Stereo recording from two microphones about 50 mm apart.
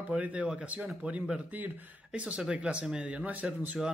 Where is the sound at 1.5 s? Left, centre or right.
Right.